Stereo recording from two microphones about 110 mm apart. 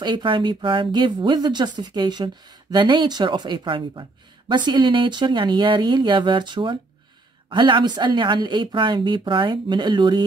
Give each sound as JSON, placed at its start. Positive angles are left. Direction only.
{"t": 0.0, "sound": "speech", "side_deg": -45}